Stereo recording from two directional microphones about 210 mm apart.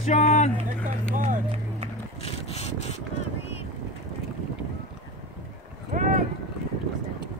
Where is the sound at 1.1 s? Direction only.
40° right (ahead or behind).